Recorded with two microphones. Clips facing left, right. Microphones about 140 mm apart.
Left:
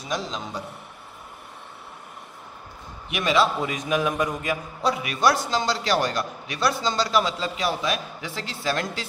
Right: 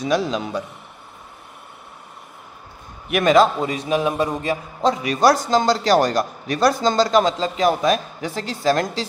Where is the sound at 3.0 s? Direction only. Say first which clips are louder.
Right 7 dB; 50° right (ahead or behind).